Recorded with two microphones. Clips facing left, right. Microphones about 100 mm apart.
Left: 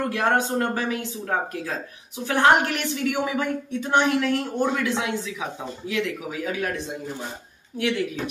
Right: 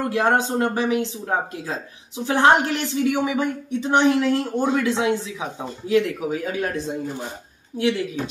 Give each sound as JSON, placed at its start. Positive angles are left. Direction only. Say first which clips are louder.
{"t": 0.0, "sound": "a woman's voice", "louder": "right 2 dB", "side_deg": -20}